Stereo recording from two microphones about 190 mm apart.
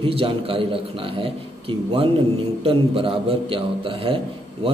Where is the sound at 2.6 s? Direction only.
30° right (ahead or behind).